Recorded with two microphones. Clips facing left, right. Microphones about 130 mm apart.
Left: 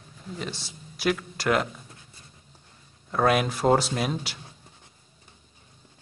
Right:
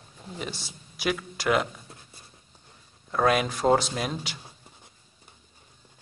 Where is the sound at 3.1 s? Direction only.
5° left (ahead or behind).